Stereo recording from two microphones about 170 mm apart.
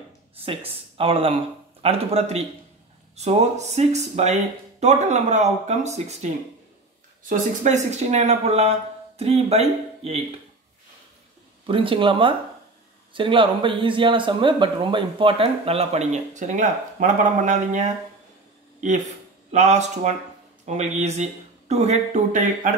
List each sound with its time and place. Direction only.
0.7 s speech: 35° right (ahead or behind)
11.6 s speech: 30° right (ahead or behind); by 17.9 s 45° right (ahead or behind)
19.5 s speech: 45° right (ahead or behind)